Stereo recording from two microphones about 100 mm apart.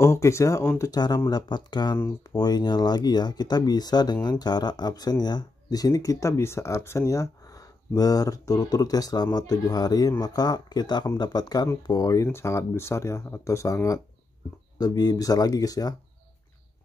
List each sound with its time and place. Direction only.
0.0 s speech: 30° left (ahead or behind)
14.8 s speech: 40° left (ahead or behind)